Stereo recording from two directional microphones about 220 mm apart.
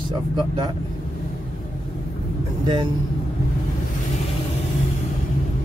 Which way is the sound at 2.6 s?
20° right (ahead or behind).